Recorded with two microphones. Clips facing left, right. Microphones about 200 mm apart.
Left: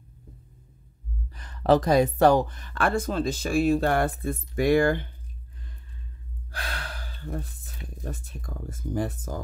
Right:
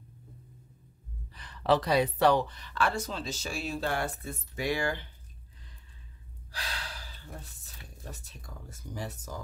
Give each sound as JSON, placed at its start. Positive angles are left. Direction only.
{"t": 1.3, "sound": "speech", "side_deg": 45}
{"t": 6.5, "sound": "speech", "side_deg": 55}